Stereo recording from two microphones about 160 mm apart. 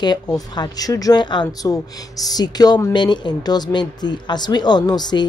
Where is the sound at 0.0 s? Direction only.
25° left (ahead or behind).